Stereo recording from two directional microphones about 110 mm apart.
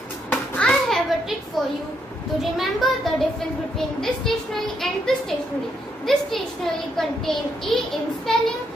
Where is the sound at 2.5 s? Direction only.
Centre (ahead or behind).